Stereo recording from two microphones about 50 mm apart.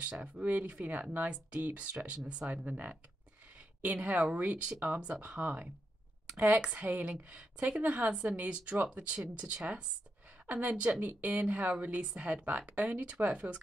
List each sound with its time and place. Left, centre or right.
0.0 s a woman's voice: right